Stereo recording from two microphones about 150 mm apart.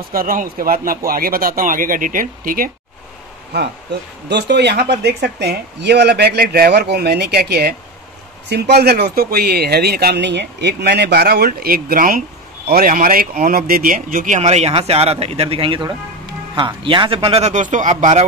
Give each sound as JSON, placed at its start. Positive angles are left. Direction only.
{"t": 0.1, "sound": "speech", "side_deg": -70}
{"t": 4.6, "sound": "speech", "side_deg": -90}
{"t": 17.5, "sound": "speech", "side_deg": -55}